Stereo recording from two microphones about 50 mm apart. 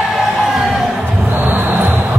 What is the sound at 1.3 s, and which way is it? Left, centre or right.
Music, right.